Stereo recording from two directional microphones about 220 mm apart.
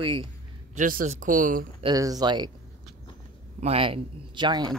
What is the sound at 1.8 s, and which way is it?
Speech, 20° right (ahead or behind).